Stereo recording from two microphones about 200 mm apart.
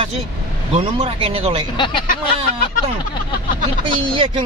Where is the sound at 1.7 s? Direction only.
25° left (ahead or behind).